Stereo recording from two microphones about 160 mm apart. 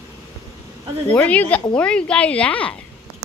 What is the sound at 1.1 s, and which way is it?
Speech, 10° left (ahead or behind).